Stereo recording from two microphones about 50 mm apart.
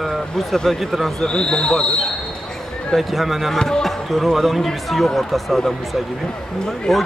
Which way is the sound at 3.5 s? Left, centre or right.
Centre.